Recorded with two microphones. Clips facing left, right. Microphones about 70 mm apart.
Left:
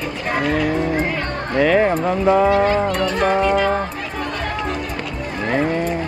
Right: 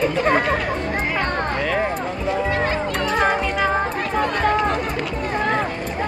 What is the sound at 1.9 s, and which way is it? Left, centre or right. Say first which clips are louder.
Speech: left 7 dB; left.